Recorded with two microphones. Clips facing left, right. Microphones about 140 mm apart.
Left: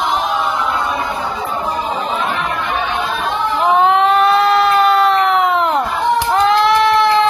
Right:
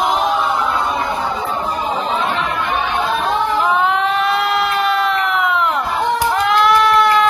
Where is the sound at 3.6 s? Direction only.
35° left (ahead or behind).